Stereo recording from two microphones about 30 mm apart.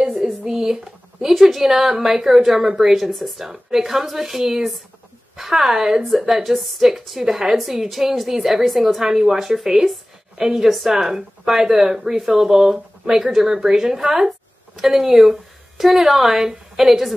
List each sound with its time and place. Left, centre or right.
0.5 s a sound: centre
1.4 s a woman's voice: centre
2.7 s speech: centre
3.0 s a woman's voice: centre
6.0 s a woman's voice: centre